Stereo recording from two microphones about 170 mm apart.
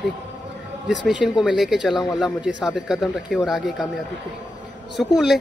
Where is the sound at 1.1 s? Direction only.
5° right (ahead or behind).